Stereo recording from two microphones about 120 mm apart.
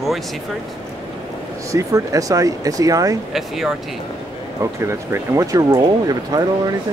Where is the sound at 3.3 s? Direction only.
5° right (ahead or behind).